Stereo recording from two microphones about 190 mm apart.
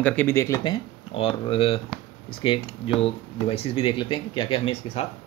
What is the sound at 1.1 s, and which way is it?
Speech, 30° left (ahead or behind).